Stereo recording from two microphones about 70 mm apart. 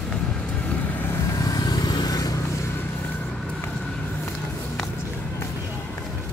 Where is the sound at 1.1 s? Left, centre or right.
Left.